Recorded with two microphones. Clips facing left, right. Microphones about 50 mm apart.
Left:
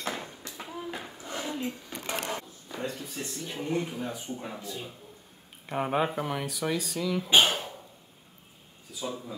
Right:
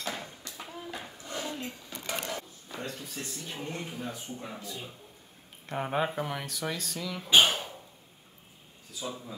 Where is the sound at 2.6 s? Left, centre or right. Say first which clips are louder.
Left 3 dB; centre.